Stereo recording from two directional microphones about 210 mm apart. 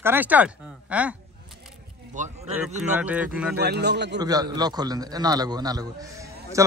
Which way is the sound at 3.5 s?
50° right (ahead or behind).